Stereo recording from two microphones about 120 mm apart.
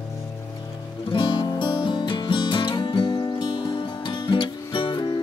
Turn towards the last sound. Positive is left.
turn(degrees=40)  # may be behind; listen again after turning